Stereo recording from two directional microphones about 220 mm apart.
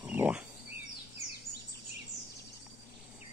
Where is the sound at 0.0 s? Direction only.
10° right (ahead or behind).